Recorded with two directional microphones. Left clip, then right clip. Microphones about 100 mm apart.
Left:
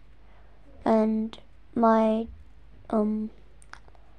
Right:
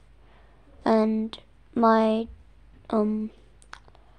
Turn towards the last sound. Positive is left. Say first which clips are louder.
# right 2 dB
turn(degrees=-10)  # may be behind; listen again after turning